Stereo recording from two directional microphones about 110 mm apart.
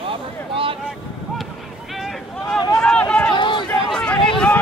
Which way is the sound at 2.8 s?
10° left (ahead or behind).